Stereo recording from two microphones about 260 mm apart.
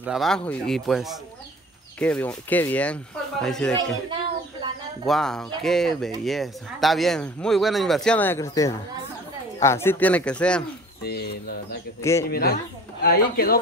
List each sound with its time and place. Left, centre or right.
0.0 s speech: centre
5.0 s speech: centre
12.0 s a man's voice: centre
12.3 s speech: left